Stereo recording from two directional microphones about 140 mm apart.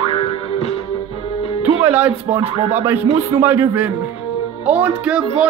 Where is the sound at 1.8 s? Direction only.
10° right (ahead or behind).